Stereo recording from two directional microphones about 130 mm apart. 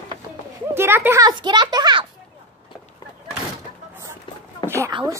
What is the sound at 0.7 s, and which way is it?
Speech, 15° right (ahead or behind).